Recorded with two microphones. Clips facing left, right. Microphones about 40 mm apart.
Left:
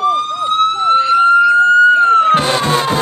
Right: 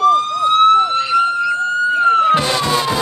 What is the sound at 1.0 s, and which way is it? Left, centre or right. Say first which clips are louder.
Police car: left 6 dB; left.